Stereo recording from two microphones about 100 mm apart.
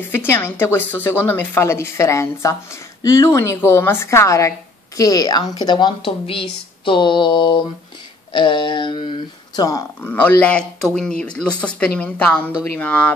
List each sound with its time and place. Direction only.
0.1 s speech: 20° left (ahead or behind); by 6.1 s 50° left (ahead or behind)
6.2 s a sound: 60° left (ahead or behind)
9.6 s speech: 35° left (ahead or behind)
10.0 s speech: 15° left (ahead or behind)